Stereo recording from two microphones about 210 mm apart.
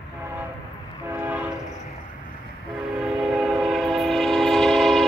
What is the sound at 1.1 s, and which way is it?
Train, 10° right (ahead or behind).